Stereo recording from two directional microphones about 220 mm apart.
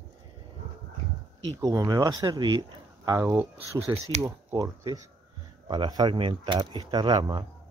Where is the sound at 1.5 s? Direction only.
15° right (ahead or behind).